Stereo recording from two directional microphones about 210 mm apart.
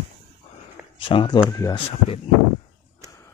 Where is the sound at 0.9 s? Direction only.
25° left (ahead or behind).